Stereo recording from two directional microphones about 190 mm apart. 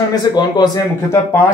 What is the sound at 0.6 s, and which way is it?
Speech, 20° left (ahead or behind).